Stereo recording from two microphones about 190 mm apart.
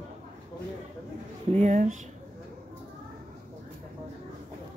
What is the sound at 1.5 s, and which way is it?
Speech, 40° right (ahead or behind).